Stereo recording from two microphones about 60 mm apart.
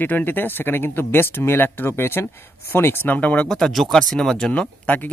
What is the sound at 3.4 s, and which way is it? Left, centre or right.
Speech, centre.